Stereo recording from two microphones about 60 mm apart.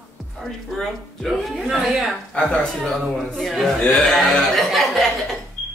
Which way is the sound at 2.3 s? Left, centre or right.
Centre.